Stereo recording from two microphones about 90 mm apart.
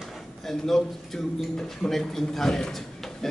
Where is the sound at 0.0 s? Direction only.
Centre (ahead or behind).